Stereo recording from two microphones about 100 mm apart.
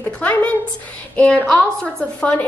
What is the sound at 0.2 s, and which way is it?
A woman's voice, 15° left (ahead or behind).